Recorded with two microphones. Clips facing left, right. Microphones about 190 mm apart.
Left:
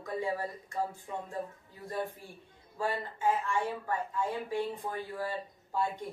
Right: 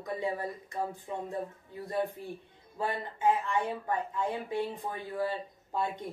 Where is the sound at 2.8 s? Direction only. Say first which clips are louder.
Right 1 dB; 20° right (ahead or behind).